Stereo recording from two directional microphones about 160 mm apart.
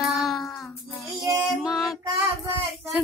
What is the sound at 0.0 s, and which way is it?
Child singing, centre (ahead or behind).